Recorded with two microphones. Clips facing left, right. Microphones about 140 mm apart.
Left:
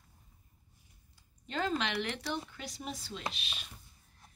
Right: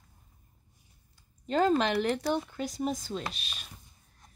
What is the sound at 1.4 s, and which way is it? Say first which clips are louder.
Speech: right 9 dB; 40° right (ahead or behind).